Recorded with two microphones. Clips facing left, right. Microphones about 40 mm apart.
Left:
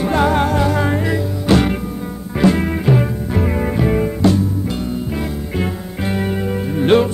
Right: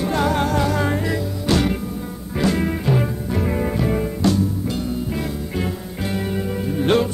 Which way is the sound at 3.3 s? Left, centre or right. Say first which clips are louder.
Left 3 dB; left.